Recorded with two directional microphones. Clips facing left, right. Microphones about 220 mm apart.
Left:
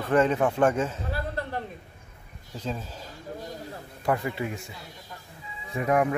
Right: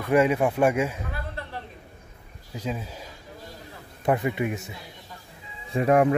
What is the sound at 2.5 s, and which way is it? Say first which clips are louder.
Speech: right 2 dB; 10° right (ahead or behind).